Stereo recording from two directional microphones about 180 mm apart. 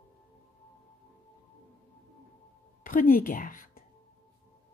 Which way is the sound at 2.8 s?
50° left (ahead or behind).